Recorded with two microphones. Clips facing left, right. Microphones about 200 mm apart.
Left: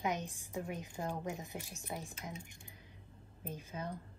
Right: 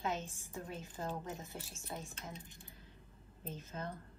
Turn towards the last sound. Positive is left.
turn(degrees=10)  # may be behind; listen again after turning